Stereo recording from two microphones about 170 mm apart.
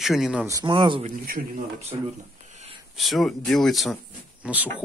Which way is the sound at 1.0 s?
55° right (ahead or behind).